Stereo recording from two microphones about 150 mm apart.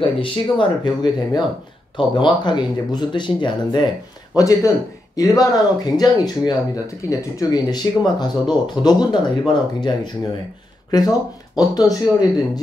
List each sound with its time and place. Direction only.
0.0 s speech: 35° left (ahead or behind)